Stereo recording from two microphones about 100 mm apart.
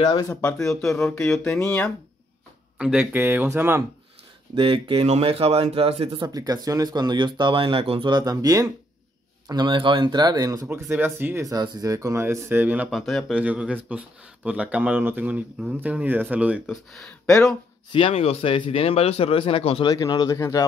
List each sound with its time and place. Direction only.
0.3 s speech: 10° left (ahead or behind)
2.8 s speech: 10° right (ahead or behind)
4.6 s speech: 65° right (ahead or behind)
6.1 s speech: 40° right (ahead or behind); by 8.1 s 65° right (ahead or behind)
8.1 s speech: 40° right (ahead or behind)
11.1 s speech: 20° right (ahead or behind)
11.4 s speech: 45° right (ahead or behind); by 12.9 s 15° right (ahead or behind)
12.9 s speech: centre (ahead or behind)
13.4 s speech: 15° right (ahead or behind)
16.6 s speech: centre (ahead or behind)
17.9 s speech: 75° left (ahead or behind)
19.9 s speech: 40° left (ahead or behind)